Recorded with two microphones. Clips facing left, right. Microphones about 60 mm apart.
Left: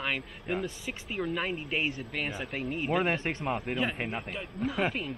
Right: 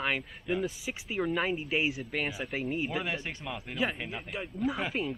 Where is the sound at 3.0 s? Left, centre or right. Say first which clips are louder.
Left 6 dB; left.